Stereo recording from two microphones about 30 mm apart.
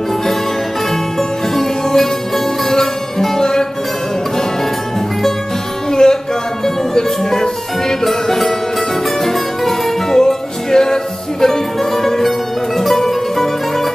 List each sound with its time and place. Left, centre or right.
1.5 s music: centre
5.9 s music: left